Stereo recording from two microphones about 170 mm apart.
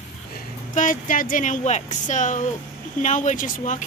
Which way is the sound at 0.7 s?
50° left (ahead or behind).